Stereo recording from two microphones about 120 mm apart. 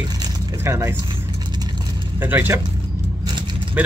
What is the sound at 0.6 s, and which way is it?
Speech, 25° right (ahead or behind).